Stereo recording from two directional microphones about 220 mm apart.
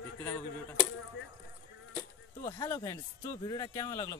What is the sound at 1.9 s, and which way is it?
Speech, 15° left (ahead or behind).